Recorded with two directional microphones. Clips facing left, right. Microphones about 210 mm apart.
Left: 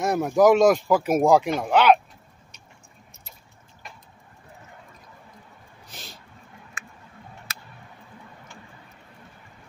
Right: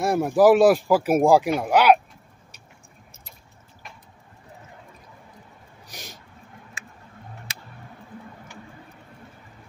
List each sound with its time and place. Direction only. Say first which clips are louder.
0.0 s speech: right 1 dB; 10° right (ahead or behind)
5.9 s owl: right 2 dB; 15° right (ahead or behind)